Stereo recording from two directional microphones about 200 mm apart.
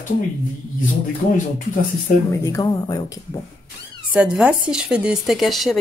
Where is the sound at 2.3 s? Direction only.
15° left (ahead or behind).